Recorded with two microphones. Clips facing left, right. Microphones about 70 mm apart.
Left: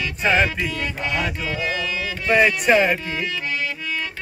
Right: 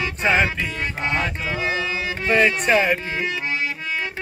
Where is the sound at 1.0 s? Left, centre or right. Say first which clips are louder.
Right 2 dB; right.